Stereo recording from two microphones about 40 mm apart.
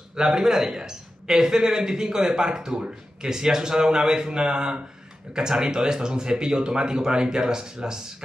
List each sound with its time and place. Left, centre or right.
0.1 s speech: centre